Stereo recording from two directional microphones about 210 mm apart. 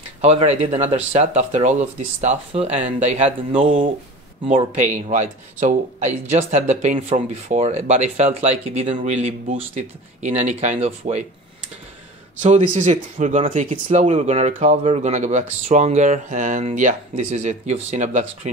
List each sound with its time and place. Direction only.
0.2 s speech: 30° right (ahead or behind)
4.7 s speech: 35° right (ahead or behind)
12.4 s speech: 35° right (ahead or behind)